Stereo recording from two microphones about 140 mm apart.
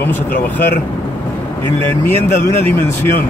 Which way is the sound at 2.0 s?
15° left (ahead or behind).